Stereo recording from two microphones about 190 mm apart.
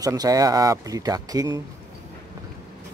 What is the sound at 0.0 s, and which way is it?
Speech, 20° right (ahead or behind).